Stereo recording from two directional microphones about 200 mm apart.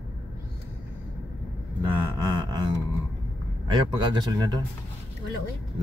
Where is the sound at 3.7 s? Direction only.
20° right (ahead or behind).